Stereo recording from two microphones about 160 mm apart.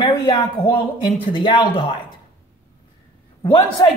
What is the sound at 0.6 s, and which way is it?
Speech, 30° left (ahead or behind).